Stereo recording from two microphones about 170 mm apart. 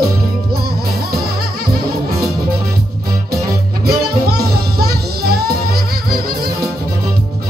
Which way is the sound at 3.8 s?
65° right (ahead or behind).